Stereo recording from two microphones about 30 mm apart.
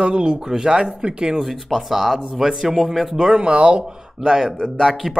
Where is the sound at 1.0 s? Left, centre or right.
Right.